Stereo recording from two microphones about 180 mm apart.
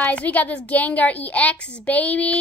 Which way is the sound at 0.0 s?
10° left (ahead or behind).